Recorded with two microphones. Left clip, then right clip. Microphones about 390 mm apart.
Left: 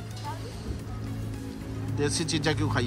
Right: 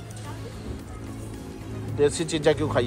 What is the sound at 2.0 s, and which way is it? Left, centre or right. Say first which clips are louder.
Speech: right 6 dB; centre.